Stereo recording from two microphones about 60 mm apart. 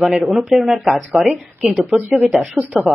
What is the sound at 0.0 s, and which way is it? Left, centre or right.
Speech, centre.